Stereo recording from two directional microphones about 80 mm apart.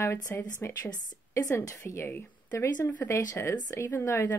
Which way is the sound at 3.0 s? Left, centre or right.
Left.